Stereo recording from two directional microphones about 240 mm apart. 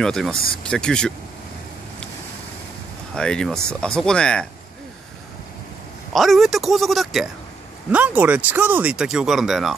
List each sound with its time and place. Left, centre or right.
0.0 s speech: centre
3.2 s speech: centre
6.1 s speech: centre